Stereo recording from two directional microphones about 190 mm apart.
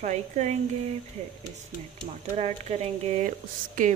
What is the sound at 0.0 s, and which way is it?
Speech, 35° right (ahead or behind).